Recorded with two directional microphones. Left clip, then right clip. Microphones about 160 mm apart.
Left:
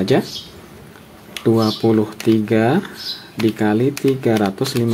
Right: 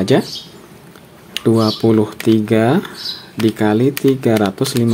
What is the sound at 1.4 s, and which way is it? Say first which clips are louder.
Speech: right 2 dB; 15° right (ahead or behind).